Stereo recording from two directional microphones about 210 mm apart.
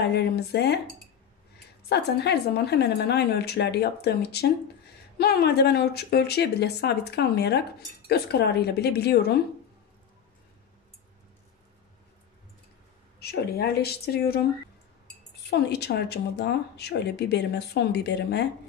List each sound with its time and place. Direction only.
0.1 s speech: 50° left (ahead or behind)
1.9 s speech: 50° left (ahead or behind)
13.2 s speech: 50° left (ahead or behind)
15.6 s speech: 50° left (ahead or behind)